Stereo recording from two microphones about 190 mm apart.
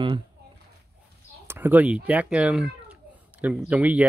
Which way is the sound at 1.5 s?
10° right (ahead or behind).